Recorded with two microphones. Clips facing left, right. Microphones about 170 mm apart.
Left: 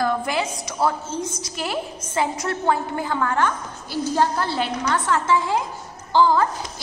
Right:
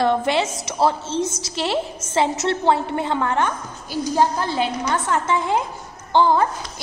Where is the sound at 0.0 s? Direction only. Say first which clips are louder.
Right 4 dB; 25° right (ahead or behind).